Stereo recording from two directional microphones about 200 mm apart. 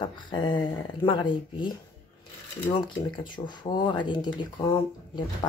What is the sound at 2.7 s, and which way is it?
Speech, 25° left (ahead or behind).